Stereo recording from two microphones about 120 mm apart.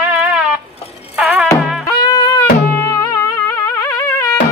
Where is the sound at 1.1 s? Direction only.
10° right (ahead or behind).